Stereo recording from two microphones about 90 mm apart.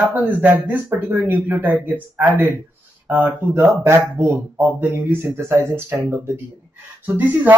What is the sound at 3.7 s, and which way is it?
Speech, 30° right (ahead or behind).